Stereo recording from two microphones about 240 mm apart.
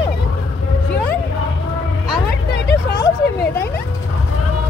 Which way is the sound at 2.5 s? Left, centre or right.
Left.